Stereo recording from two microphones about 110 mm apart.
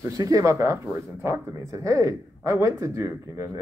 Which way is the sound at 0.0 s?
30° right (ahead or behind).